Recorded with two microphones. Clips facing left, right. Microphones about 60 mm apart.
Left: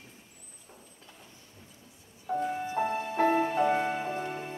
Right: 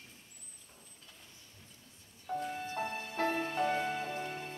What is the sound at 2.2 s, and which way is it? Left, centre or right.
Music, centre.